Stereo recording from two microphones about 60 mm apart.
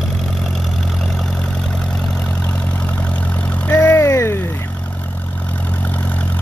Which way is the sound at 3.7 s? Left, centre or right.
Left.